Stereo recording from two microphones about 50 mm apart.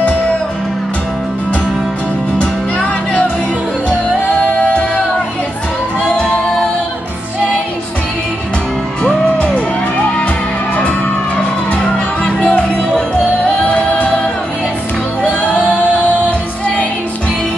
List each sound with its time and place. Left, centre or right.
4.6 s music: left
11.7 s music: left